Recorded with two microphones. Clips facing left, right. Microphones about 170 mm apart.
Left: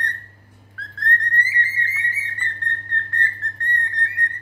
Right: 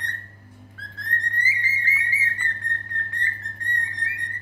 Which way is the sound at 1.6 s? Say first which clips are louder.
Left 2 dB; 10° right (ahead or behind).